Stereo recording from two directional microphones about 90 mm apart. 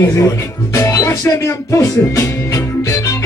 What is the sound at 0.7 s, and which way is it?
Music, 35° left (ahead or behind).